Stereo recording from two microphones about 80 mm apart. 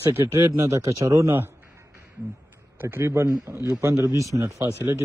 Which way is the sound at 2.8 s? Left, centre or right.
Right.